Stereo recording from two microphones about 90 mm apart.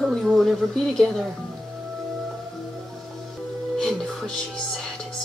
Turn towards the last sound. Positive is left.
turn(degrees=5)  # may be behind; listen again after turning